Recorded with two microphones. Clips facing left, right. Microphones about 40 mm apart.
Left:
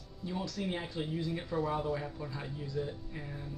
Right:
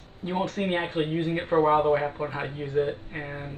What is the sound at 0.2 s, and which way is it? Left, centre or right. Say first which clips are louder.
Speech: right 9 dB; right.